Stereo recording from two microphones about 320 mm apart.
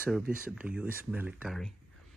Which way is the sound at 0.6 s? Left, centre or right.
Centre.